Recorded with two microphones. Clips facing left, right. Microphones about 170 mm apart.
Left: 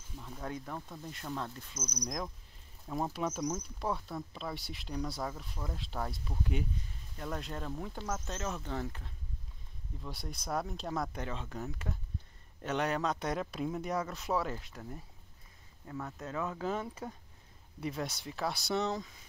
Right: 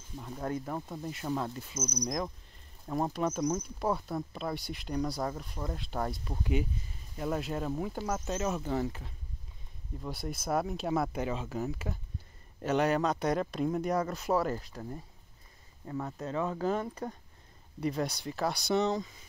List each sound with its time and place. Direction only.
0.2 s speech: 10° right (ahead or behind)
0.7 s speech: 20° right (ahead or behind)
2.9 s speech: centre (ahead or behind)
14.5 s speech: 35° right (ahead or behind)
15.9 s speech: 15° right (ahead or behind)
16.5 s speech: centre (ahead or behind)